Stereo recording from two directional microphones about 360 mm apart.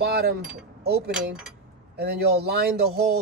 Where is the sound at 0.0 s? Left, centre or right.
Right.